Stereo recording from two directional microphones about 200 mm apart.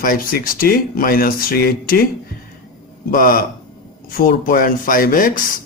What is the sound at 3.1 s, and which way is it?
A man's voice, 45° left (ahead or behind).